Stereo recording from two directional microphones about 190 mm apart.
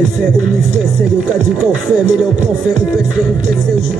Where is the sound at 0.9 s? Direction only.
5° right (ahead or behind).